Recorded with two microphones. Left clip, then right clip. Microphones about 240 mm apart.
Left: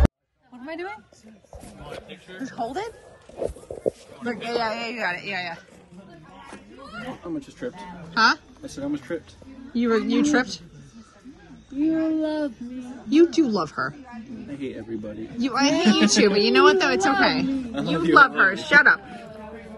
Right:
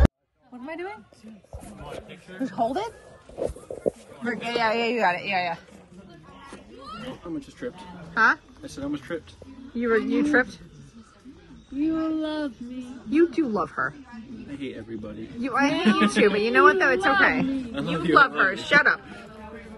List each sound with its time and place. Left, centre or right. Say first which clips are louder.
0.7 s a sound: left 1 dB; left
1.9 s a man's voice: left 1 dB; centre
4.6 s a man's voice: right 5 dB; centre
6.5 s children playing: left 1 dB; centre
7.8 s a woman's voice: left 1 dB; centre
11.7 s a man's voice: left 3 dB; centre